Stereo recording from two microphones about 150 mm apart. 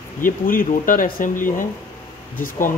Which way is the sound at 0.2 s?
65° left (ahead or behind).